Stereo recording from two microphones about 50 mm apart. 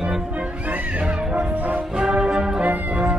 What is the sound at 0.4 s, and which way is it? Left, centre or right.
Music, right.